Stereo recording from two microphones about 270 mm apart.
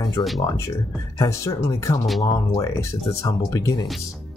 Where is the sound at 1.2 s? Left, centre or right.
Centre.